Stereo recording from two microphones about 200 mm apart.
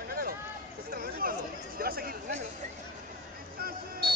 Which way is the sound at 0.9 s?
50° right (ahead or behind).